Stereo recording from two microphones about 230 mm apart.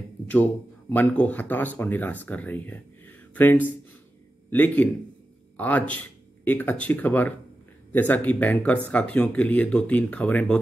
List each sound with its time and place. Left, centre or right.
0.3 s speech: centre